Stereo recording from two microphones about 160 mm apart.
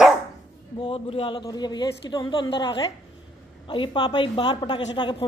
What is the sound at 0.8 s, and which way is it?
A woman's voice, 35° left (ahead or behind).